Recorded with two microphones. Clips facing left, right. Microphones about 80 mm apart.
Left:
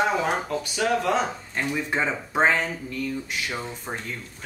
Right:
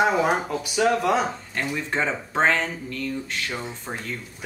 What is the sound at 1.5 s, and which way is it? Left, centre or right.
Speech, centre.